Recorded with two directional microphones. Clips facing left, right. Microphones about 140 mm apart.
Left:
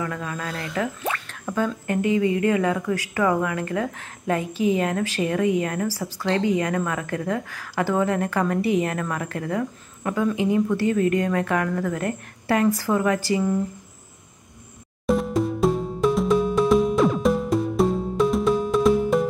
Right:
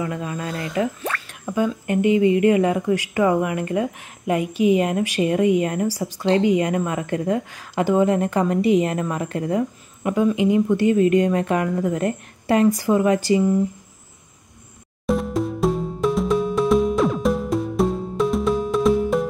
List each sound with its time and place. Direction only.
0.0 s speech: 20° right (ahead or behind)
15.0 s music: centre (ahead or behind)